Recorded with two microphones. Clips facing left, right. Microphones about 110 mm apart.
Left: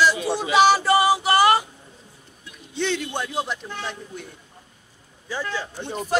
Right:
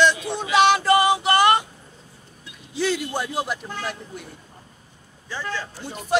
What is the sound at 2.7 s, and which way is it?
A man's voice, 5° right (ahead or behind).